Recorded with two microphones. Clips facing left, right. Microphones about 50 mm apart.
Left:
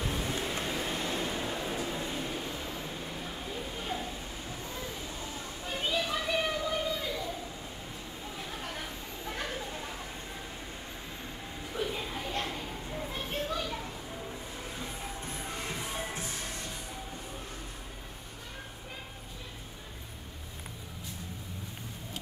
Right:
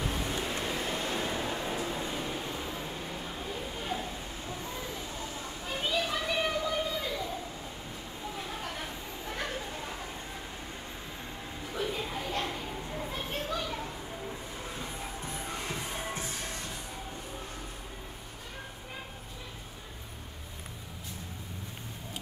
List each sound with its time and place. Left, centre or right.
0.0 s vehicle: centre
0.9 s a sound: centre
5.9 s children playing: centre
8.4 s chatter: centre
11.7 s a sound: centre
12.5 s children playing: centre
14.9 s music: centre